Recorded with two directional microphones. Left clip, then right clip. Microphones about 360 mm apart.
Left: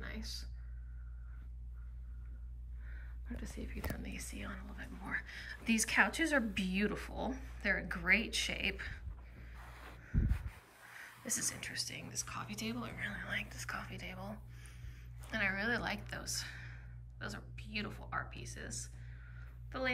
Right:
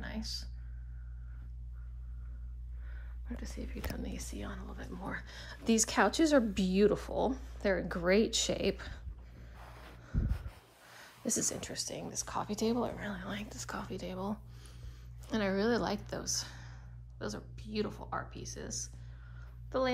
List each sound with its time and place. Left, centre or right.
0.0 s a sound: centre
2.9 s speech: centre
11.3 s speech: centre
12.9 s speech: right
13.2 s speech: centre
15.2 s a woman's voice: centre
19.3 s a sound: centre